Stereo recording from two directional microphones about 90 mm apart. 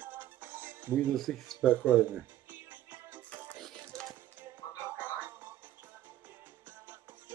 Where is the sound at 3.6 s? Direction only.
5° left (ahead or behind).